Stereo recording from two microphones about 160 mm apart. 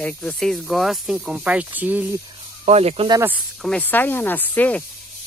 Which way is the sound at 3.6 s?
10° left (ahead or behind).